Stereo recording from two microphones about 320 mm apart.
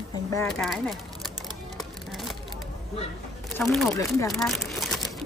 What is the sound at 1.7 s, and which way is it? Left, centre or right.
Music, centre.